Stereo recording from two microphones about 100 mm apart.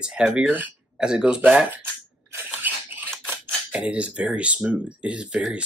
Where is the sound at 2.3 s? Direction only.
20° right (ahead or behind).